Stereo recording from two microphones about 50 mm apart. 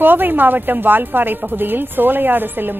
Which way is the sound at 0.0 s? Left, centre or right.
Right.